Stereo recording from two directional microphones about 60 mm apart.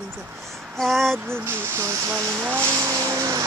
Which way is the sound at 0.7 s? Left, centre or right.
Centre.